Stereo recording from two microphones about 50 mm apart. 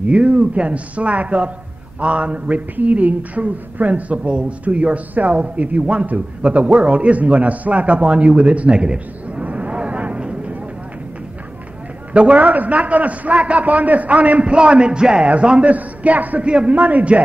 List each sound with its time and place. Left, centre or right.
0.0 s speech: right
12.1 s a man's voice: right